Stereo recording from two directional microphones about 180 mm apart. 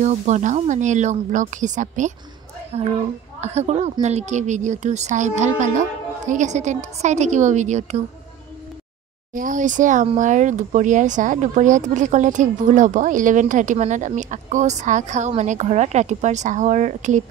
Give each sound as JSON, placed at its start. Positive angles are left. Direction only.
{"t": 0.0, "sound": "a woman's voice", "side_deg": -40}
{"t": 9.3, "sound": "speech", "side_deg": -45}